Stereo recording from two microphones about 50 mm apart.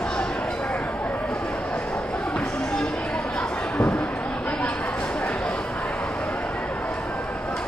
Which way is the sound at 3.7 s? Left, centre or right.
Left.